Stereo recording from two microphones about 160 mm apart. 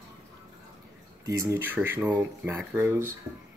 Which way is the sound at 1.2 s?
20° right (ahead or behind).